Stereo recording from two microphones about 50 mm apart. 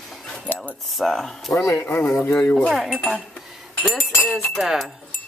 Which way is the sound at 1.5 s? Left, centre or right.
Left.